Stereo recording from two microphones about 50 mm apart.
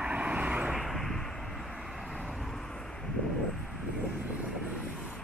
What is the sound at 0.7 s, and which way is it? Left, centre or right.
Vehicle, centre.